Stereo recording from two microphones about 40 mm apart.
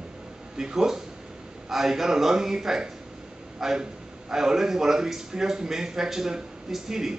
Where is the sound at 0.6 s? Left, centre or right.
Centre.